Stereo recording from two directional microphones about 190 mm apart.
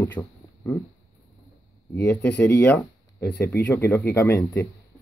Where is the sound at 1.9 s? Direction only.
10° left (ahead or behind).